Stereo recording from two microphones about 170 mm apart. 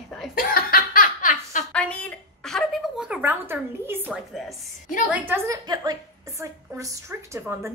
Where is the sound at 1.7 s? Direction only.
5° left (ahead or behind).